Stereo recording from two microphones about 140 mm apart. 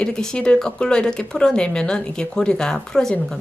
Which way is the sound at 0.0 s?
5° left (ahead or behind).